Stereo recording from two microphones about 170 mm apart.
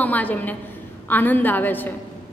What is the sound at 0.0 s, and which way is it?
A woman's voice, 10° left (ahead or behind).